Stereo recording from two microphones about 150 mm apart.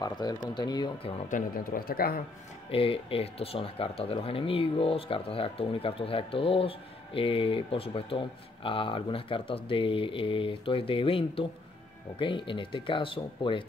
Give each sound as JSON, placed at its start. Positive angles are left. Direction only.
{"t": 0.0, "sound": "speech", "side_deg": 25}
{"t": 1.3, "sound": "speech", "side_deg": 75}
{"t": 2.7, "sound": "speech", "side_deg": 40}